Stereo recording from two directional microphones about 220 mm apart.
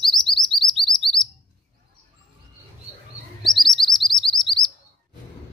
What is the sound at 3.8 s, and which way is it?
Chirp, 20° left (ahead or behind).